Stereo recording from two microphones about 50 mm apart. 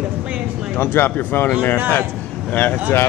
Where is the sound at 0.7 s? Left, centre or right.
Left.